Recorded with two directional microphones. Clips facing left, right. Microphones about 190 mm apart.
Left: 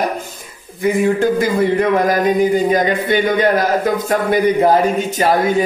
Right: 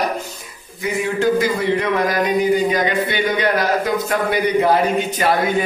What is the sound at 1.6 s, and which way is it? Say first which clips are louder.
Speech: left 4 dB; 45° left (ahead or behind).